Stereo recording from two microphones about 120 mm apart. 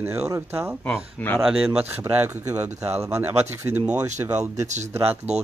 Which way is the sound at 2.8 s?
25° right (ahead or behind).